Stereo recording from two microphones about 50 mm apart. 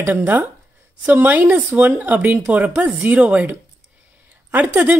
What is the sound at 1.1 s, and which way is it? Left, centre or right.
A woman's voice, right.